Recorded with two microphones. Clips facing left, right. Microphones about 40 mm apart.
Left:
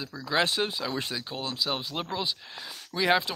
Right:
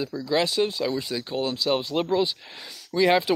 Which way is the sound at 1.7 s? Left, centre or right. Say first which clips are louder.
Right 9 dB; centre.